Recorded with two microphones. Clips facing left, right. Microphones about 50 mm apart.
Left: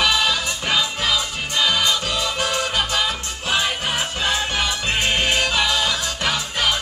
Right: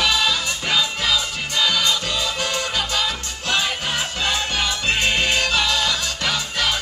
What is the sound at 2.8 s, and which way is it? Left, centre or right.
Music, left.